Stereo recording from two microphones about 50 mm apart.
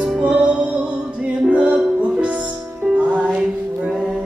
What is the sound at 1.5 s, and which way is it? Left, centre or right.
Music, right.